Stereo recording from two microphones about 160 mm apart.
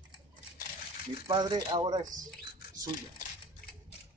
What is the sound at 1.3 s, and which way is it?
Speech, 25° right (ahead or behind).